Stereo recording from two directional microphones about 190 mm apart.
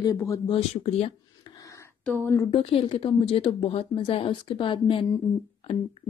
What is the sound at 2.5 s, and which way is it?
A woman's voice, 30° left (ahead or behind).